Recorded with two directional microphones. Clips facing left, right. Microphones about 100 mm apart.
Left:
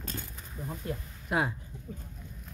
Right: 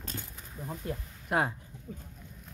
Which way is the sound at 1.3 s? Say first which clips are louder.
Right 1 dB; 50° right (ahead or behind).